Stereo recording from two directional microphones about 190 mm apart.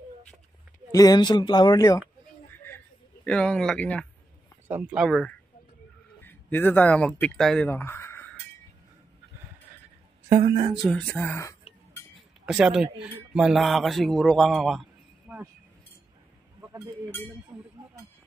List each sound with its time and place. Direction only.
0.9 s speech: 20° left (ahead or behind)
3.3 s speech: 5° left (ahead or behind)
4.6 s speech: 10° right (ahead or behind)
5.0 s speech: 5° left (ahead or behind)
10.2 s speech: 40° right (ahead or behind)
10.7 s speech: centre (ahead or behind)
12.4 s speech: 5° right (ahead or behind)
17.5 s speech: 10° right (ahead or behind)